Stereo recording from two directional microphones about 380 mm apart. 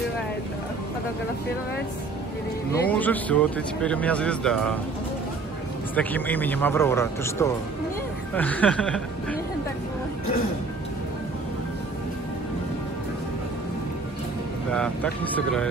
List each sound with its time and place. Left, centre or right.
2.7 s speech: centre
5.9 s speech: centre
14.7 s speech: centre